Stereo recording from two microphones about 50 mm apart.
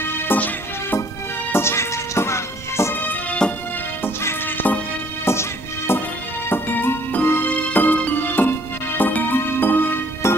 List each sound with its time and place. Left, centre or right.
0.3 s music: left
1.5 s music: left
2.9 s music: left
4.6 s music: left
5.2 s music: left
6.5 s music: left
10.2 s music: left